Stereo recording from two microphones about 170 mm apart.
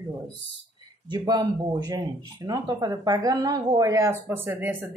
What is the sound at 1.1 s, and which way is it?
Speech, 25° right (ahead or behind).